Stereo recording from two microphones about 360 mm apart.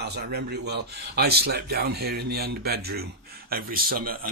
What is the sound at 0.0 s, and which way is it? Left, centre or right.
A man's voice, right.